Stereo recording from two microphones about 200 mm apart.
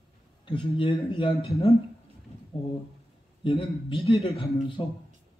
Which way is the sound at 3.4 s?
25° left (ahead or behind).